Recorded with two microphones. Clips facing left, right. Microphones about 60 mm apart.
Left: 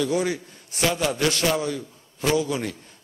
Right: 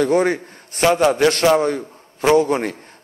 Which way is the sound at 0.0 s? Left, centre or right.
Right.